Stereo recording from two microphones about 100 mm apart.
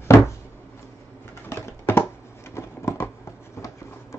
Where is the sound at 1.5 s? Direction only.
25° left (ahead or behind).